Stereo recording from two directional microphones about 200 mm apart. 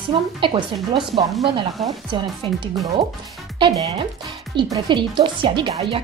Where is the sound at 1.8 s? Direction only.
Centre (ahead or behind).